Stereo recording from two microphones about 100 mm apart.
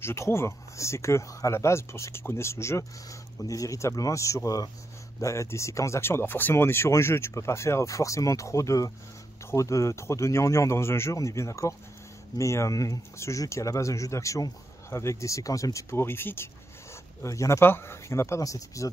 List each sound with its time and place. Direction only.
0.0 s speech: 25° left (ahead or behind)